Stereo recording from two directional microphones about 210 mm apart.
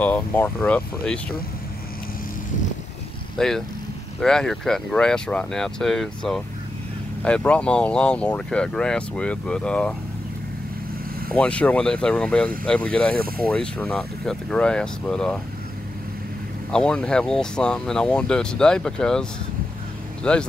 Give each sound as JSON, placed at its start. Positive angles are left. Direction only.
{"t": 0.0, "sound": "speech", "side_deg": 10}
{"t": 3.3, "sound": "speech", "side_deg": 0}
{"t": 11.3, "sound": "speech", "side_deg": 5}
{"t": 13.1, "sound": "speech", "side_deg": -45}
{"t": 13.5, "sound": "speech", "side_deg": 5}
{"t": 16.7, "sound": "speech", "side_deg": 5}
{"t": 20.2, "sound": "speech", "side_deg": 5}